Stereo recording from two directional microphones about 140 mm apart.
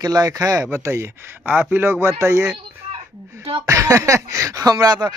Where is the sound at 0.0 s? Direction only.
25° right (ahead or behind).